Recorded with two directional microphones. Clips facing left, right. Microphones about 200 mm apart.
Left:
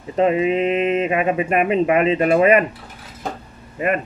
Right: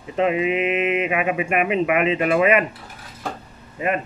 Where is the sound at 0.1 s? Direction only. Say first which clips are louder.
Left 3 dB; 40° left (ahead or behind).